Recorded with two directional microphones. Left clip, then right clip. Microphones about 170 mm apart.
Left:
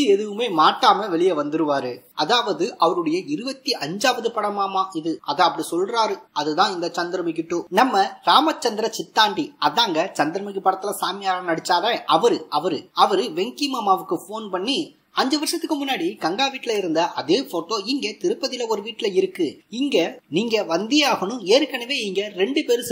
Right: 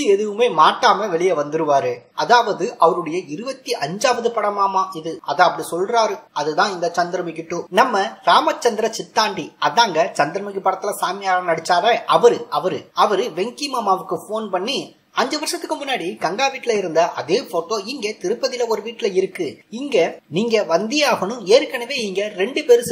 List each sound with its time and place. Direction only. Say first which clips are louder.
0.0 s speech: right 3 dB; 35° left (ahead or behind)